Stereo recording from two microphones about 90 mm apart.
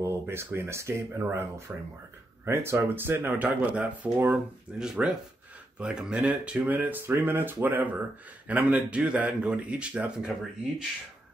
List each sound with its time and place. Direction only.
0.0 s speech: 25° right (ahead or behind); by 10.3 s 10° right (ahead or behind)